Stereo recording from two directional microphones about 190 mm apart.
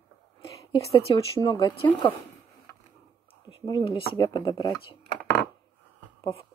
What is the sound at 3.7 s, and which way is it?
Speech, 20° left (ahead or behind).